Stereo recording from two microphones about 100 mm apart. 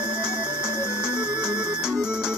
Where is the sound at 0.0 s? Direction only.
10° right (ahead or behind).